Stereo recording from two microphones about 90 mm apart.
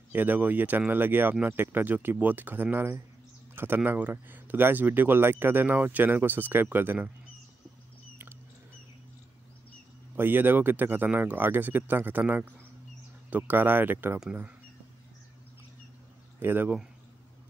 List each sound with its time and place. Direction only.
0.1 s speech: 20° right (ahead or behind)
10.1 s speech: 20° right (ahead or behind)
16.3 s speech: 25° right (ahead or behind)